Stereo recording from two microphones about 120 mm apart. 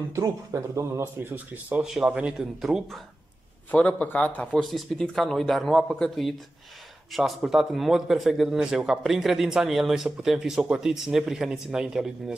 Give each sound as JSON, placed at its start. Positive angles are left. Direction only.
{"t": 0.1, "sound": "speech", "side_deg": -25}
{"t": 1.8, "sound": "a man's voice", "side_deg": -5}
{"t": 3.7, "sound": "a man's voice", "side_deg": 10}